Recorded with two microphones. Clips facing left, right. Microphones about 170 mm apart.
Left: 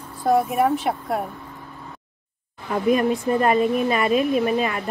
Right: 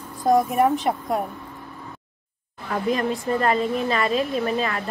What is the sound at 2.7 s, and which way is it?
A woman's voice, 15° left (ahead or behind).